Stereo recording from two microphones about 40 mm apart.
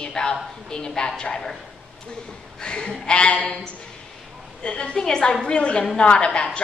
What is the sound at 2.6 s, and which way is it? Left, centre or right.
Speech, left.